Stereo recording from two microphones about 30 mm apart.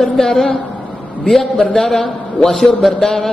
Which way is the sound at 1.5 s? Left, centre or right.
Centre.